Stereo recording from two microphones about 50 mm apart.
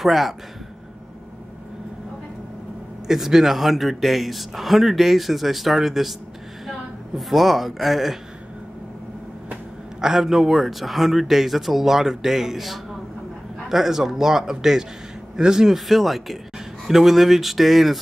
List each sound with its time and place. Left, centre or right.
0.0 s a man's voice: centre
3.1 s a man's voice: centre
7.2 s a man's voice: centre
9.9 s a man's voice: centre
15.9 s a man's voice: centre